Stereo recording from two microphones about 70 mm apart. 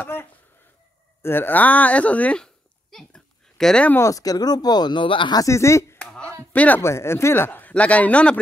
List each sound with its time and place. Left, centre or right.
0.0 s a sound: left
1.2 s speech: left
2.4 s a sound: centre
4.0 s speech: left
5.5 s speech: left
6.5 s speech: left
6.8 s speech: left; by 8.4 s centre